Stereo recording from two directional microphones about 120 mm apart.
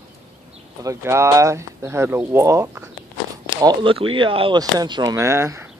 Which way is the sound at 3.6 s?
45° right (ahead or behind).